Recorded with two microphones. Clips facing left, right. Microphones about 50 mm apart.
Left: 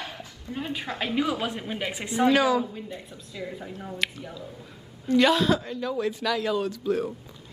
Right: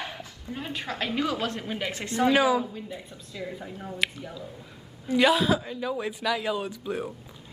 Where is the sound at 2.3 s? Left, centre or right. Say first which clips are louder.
Even; centre.